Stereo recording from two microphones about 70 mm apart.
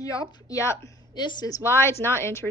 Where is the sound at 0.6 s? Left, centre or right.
Left.